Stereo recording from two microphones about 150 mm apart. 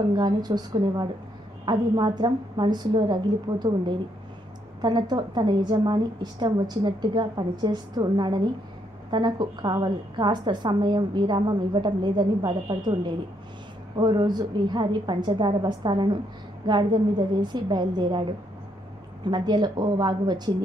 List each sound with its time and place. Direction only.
0.1 s a woman's voice: 30° right (ahead or behind)
19.3 s a woman's voice: 30° right (ahead or behind)